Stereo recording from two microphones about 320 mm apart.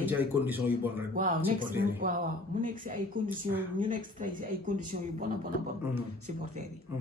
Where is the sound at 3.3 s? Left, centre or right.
Centre.